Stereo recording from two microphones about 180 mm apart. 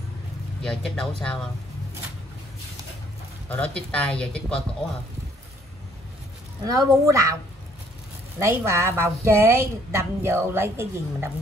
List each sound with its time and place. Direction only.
0.6 s speech: 5° left (ahead or behind)
3.4 s speech: 5° left (ahead or behind)
6.6 s speech: 20° right (ahead or behind)
8.4 s a woman's voice: 15° right (ahead or behind)